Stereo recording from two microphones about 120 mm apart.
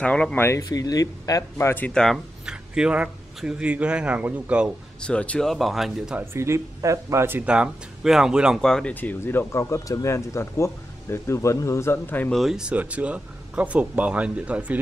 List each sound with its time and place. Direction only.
0.0 s speech: 10° left (ahead or behind)
0.4 s speech: 25° left (ahead or behind)
1.9 s speech: 5° left (ahead or behind)
2.4 s speech: 5° right (ahead or behind)
5.0 s speech: 10° left (ahead or behind)
6.1 s speech: 20° right (ahead or behind)
8.5 s speech: 5° left (ahead or behind)
9.2 s speech: 20° left (ahead or behind)
12.3 s speech: centre (ahead or behind)